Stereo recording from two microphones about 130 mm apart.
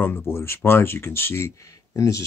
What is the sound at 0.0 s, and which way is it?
Speech, 15° left (ahead or behind).